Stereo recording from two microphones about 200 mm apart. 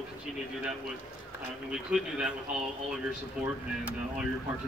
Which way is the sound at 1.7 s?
5° right (ahead or behind).